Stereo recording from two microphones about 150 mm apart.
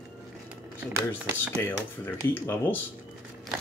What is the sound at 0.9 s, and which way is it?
Speech, 15° right (ahead or behind).